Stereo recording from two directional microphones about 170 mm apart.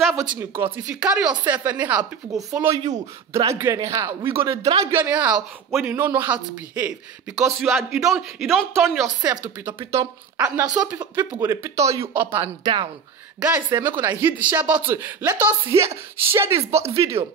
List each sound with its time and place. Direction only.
0.0 s speech: 5° right (ahead or behind)
12.6 s speech: 25° right (ahead or behind)